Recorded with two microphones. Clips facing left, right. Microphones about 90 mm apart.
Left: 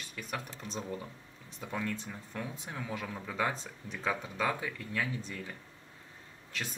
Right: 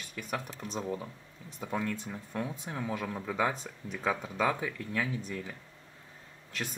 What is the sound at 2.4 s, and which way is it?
Speech, 25° right (ahead or behind).